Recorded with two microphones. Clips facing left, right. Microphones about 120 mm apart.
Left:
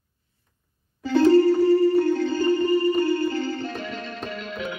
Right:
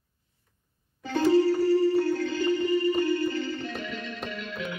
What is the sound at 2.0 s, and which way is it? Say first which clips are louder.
Music: left 5 dB; 20° left (ahead or behind).